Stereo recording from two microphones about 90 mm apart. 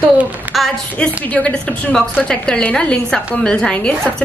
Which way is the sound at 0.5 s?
Centre (ahead or behind).